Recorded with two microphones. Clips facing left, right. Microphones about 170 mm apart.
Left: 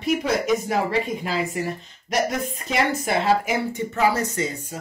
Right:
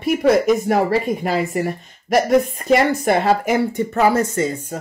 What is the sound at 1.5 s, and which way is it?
Speech, 55° right (ahead or behind).